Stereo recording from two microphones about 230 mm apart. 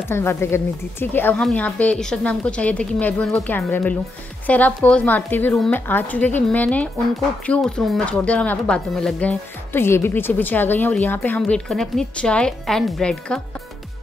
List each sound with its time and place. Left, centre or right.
0.1 s speech: centre